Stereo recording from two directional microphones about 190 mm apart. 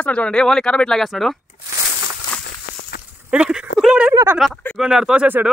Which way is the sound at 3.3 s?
5° right (ahead or behind).